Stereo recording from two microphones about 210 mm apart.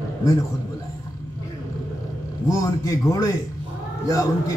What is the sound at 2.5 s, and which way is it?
Speech, 15° left (ahead or behind).